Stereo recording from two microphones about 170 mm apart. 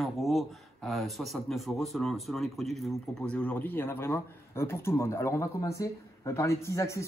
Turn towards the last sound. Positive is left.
turn(degrees=15)  # may be behind; listen again after turning